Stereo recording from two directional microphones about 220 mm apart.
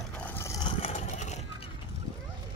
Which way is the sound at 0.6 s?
20° left (ahead or behind).